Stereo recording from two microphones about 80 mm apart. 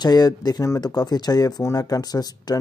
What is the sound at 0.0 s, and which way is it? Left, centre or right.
Speech, left.